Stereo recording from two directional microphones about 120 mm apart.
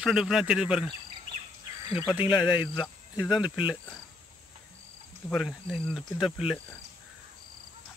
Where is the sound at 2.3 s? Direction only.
35° left (ahead or behind).